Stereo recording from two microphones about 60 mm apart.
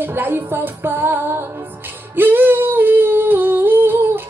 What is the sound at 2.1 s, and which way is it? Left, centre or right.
Humming, right.